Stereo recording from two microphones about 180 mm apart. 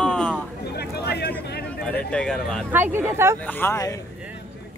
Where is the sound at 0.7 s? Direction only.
65° left (ahead or behind).